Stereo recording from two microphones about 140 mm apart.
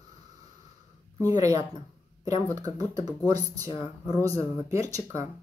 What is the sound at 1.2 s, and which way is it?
Speech, 25° right (ahead or behind).